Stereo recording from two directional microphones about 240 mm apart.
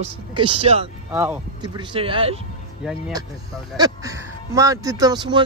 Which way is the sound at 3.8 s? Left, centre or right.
Centre.